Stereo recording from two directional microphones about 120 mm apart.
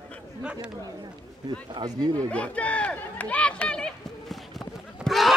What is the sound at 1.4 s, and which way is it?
Speech, 35° right (ahead or behind).